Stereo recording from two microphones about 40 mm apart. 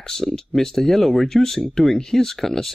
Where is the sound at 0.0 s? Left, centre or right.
Centre.